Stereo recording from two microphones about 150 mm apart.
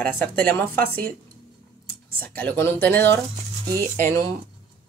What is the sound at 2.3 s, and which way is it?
Speech, 15° left (ahead or behind).